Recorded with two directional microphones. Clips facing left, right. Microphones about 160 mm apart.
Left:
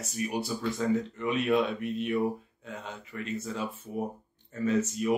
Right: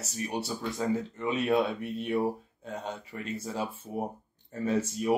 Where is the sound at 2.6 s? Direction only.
35° right (ahead or behind).